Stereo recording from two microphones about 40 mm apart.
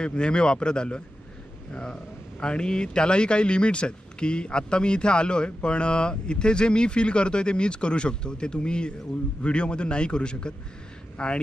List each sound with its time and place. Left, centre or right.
0.0 s speech: left